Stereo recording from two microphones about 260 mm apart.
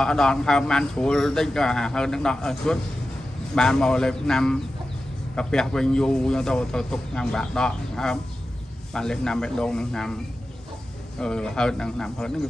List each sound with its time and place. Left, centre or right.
0.0 s a man's voice: centre
11.1 s a man's voice: centre